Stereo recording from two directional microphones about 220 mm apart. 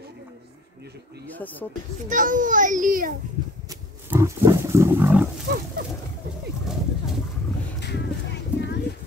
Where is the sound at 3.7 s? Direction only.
15° right (ahead or behind).